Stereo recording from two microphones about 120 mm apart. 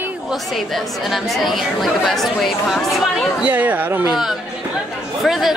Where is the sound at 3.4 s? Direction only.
15° right (ahead or behind).